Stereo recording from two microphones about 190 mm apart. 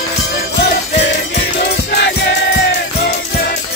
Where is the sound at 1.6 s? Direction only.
60° left (ahead or behind).